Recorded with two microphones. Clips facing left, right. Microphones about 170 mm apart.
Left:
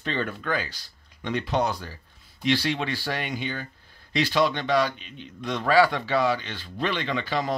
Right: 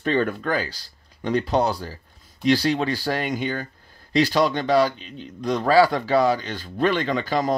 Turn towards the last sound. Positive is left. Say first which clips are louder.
# right 5 dB
turn(degrees=-45)  # may be behind; listen again after turning